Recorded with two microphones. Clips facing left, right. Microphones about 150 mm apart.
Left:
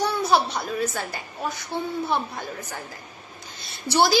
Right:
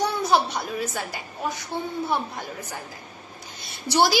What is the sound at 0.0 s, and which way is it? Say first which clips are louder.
A child's voice: even; 15° right (ahead or behind).